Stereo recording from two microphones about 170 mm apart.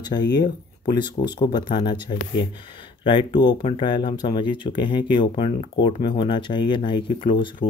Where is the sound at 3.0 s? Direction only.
30° left (ahead or behind).